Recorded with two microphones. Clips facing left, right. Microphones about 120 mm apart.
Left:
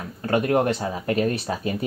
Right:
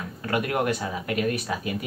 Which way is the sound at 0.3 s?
35° left (ahead or behind).